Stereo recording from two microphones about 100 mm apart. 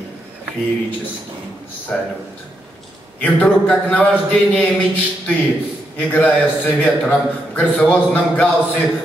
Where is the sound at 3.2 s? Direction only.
15° left (ahead or behind).